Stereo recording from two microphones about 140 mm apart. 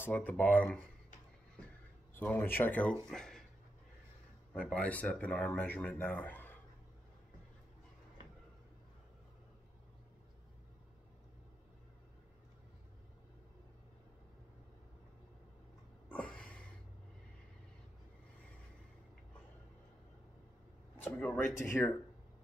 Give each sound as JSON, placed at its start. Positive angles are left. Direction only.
{"t": 0.0, "sound": "speech", "side_deg": 15}
{"t": 2.1, "sound": "speech", "side_deg": 15}
{"t": 4.6, "sound": "speech", "side_deg": 10}
{"t": 16.1, "sound": "a sound", "side_deg": 10}
{"t": 21.0, "sound": "speech", "side_deg": 10}